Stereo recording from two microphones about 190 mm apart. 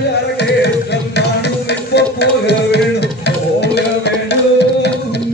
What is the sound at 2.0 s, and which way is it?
Music, 65° left (ahead or behind).